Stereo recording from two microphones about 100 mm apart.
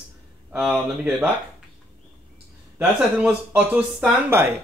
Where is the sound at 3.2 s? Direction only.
15° right (ahead or behind).